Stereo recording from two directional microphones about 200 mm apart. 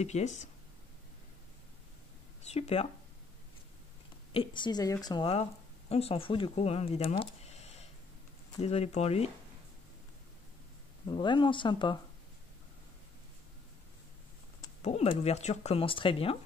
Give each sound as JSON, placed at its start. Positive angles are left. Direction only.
{"t": 0.0, "sound": "speech", "side_deg": 35}
{"t": 2.5, "sound": "speech", "side_deg": 30}
{"t": 4.3, "sound": "speech", "side_deg": 25}
{"t": 11.1, "sound": "speech", "side_deg": 25}
{"t": 14.8, "sound": "speech", "side_deg": 30}